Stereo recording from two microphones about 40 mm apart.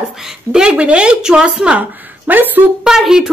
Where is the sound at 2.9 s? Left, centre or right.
Centre.